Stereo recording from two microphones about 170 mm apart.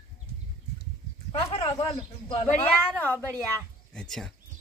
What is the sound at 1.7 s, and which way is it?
Speech, 25° left (ahead or behind).